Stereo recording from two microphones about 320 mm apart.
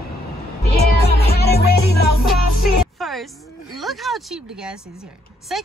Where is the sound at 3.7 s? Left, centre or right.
Centre.